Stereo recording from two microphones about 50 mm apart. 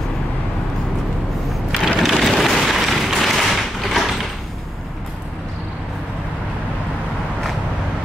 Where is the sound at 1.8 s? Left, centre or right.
Centre.